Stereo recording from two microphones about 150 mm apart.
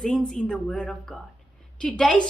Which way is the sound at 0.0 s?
5° left (ahead or behind).